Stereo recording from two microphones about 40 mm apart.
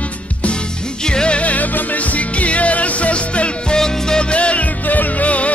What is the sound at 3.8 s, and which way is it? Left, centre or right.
Music, centre.